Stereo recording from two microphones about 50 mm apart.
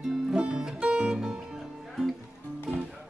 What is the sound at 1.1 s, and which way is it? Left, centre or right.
Music, centre.